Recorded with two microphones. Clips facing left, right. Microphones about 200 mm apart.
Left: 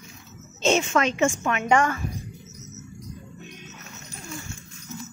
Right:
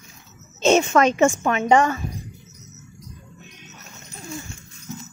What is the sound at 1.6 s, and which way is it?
Speech, 20° right (ahead or behind).